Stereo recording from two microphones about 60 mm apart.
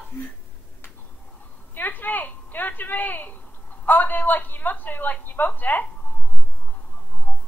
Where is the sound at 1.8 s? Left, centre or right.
Left.